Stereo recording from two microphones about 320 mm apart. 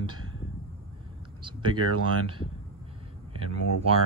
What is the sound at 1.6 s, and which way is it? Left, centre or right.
Speech, right.